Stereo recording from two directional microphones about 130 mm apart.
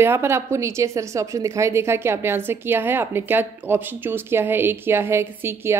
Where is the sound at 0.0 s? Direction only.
20° right (ahead or behind).